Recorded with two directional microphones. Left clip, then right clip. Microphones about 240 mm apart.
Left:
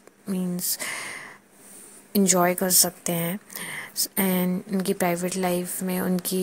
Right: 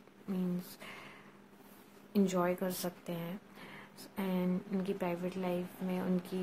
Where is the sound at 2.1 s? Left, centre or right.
Left.